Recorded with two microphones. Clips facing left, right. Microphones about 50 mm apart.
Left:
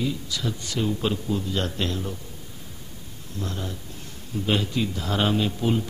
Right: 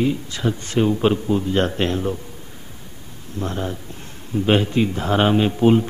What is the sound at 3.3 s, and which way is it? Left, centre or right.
A man's voice, right.